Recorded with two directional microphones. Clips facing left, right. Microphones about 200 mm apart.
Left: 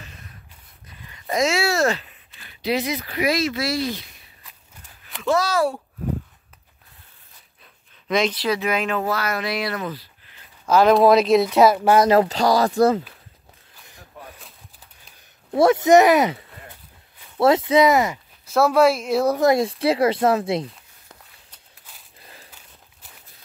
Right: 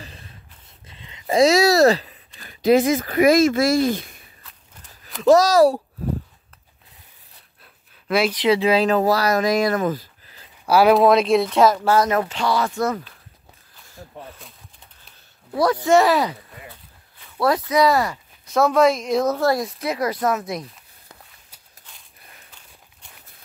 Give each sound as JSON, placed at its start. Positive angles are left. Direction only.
{"t": 0.0, "sound": "a sound", "side_deg": -30}
{"t": 0.8, "sound": "speech", "side_deg": -25}
{"t": 5.2, "sound": "speech", "side_deg": -40}
{"t": 7.6, "sound": "pant", "side_deg": -5}
{"t": 8.4, "sound": "speech", "side_deg": -30}
{"t": 10.6, "sound": "speech", "side_deg": -5}
{"t": 12.1, "sound": "speech", "side_deg": 35}
{"t": 15.5, "sound": "speech", "side_deg": 25}
{"t": 17.4, "sound": "speech", "side_deg": 25}
{"t": 18.5, "sound": "a woman's voice", "side_deg": 5}
{"t": 19.6, "sound": "speech", "side_deg": 30}